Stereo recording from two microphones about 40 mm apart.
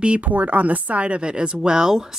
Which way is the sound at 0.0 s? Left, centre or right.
Right.